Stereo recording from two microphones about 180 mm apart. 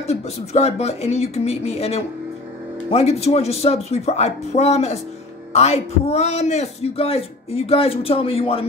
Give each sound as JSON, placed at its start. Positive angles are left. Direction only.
{"t": 0.0, "sound": "a man's voice", "side_deg": 35}